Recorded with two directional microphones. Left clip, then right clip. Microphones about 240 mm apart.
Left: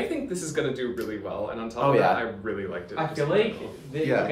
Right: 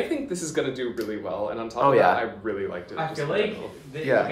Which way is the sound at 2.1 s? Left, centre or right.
Right.